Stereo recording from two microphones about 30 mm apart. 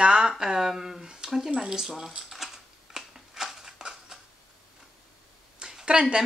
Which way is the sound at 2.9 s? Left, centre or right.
Centre.